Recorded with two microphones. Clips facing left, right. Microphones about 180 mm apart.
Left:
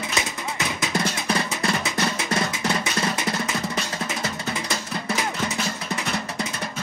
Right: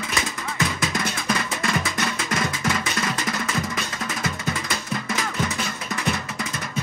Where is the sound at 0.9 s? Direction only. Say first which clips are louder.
Left 2 dB; 30° left (ahead or behind).